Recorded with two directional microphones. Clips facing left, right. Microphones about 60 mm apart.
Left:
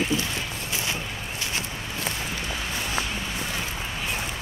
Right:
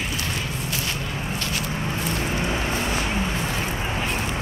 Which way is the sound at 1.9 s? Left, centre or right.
Right.